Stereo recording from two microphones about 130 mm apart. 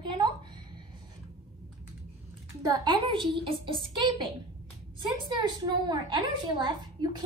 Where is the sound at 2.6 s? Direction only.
35° right (ahead or behind).